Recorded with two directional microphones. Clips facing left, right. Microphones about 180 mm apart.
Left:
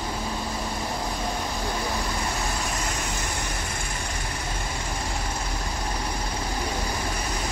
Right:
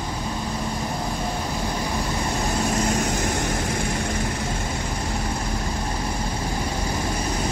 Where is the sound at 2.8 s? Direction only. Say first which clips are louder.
Right 8 dB; 50° right (ahead or behind).